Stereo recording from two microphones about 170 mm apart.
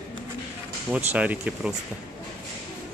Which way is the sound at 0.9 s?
10° right (ahead or behind).